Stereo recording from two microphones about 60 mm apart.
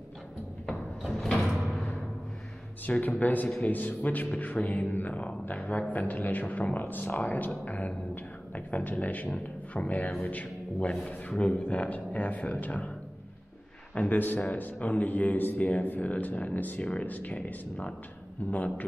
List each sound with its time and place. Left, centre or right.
0.7 s a sound: centre
2.9 s speech: left
13.9 s speech: left